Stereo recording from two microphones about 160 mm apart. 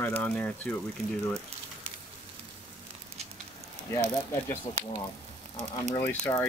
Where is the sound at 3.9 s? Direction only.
15° left (ahead or behind).